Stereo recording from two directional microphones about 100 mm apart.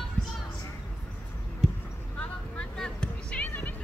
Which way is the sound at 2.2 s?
10° left (ahead or behind).